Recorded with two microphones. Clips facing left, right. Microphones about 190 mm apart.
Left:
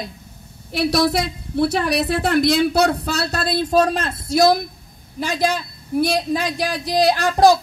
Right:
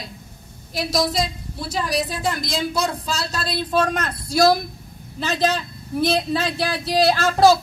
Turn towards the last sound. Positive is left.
turn(degrees=15)  # may be behind; listen again after turning